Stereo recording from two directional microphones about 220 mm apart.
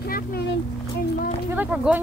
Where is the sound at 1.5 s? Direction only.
5° right (ahead or behind).